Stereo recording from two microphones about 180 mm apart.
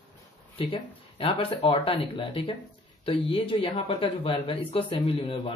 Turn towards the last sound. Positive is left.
turn(degrees=30)  # may be behind; listen again after turning